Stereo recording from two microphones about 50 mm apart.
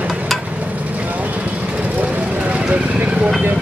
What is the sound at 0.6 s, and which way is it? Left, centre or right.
Vehicle, right.